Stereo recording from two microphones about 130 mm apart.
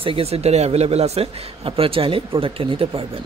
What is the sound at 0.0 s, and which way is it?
A man's voice, 50° right (ahead or behind).